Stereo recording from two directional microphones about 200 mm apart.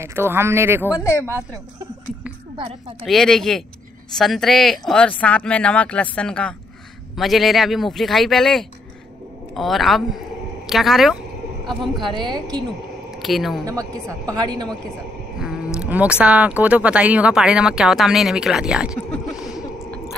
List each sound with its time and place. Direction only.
0.0 s speech: 10° right (ahead or behind)
0.9 s speech: 15° left (ahead or behind)
2.5 s a woman's voice: 25° right (ahead or behind)
3.1 s speech: centre (ahead or behind)
12.0 s a woman's voice: 25° right (ahead or behind)
13.2 s speech: centre (ahead or behind)
13.7 s speech: 15° right (ahead or behind)
15.3 s a sound: 5° right (ahead or behind)
15.8 s speech: 5° right (ahead or behind)
19.3 s a sound: centre (ahead or behind)